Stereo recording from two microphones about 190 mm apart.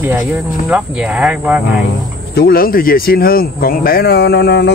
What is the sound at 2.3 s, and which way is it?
Speech, 55° left (ahead or behind).